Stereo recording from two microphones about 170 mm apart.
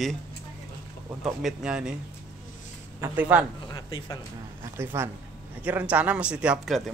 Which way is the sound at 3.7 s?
25° left (ahead or behind).